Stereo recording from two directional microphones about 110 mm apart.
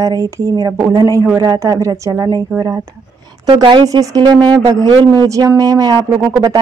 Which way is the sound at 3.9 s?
35° right (ahead or behind).